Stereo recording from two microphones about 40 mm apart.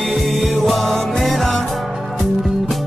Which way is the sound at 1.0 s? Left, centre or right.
Centre.